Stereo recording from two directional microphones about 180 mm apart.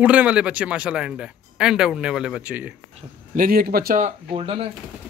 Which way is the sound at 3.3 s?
55° right (ahead or behind).